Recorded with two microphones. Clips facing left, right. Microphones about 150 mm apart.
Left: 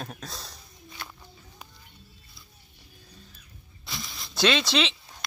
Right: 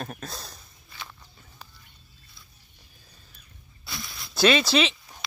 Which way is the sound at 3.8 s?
Centre (ahead or behind).